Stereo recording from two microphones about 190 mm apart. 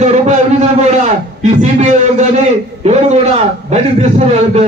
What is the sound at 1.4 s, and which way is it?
A man's voice, 35° right (ahead or behind).